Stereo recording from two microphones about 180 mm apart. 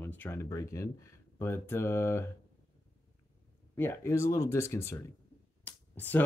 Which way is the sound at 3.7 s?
15° left (ahead or behind).